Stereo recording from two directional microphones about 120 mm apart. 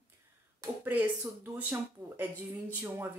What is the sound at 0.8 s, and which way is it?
Speech, 15° right (ahead or behind).